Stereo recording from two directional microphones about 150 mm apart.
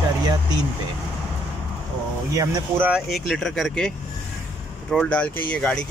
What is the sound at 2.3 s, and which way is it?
Speech, 20° right (ahead or behind).